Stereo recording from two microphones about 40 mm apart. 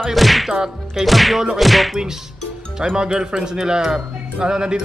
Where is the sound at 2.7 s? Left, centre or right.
Centre.